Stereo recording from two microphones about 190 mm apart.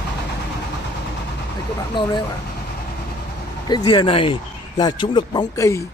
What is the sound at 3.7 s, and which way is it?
Speech, 25° left (ahead or behind).